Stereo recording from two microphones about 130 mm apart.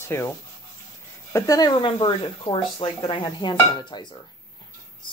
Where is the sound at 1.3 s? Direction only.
30° left (ahead or behind).